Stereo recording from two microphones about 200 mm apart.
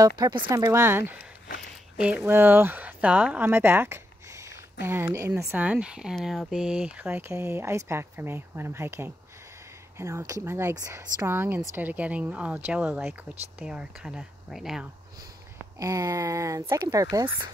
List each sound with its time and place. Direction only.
0.5 s speech: 15° right (ahead or behind)
15.8 s speech: 15° right (ahead or behind)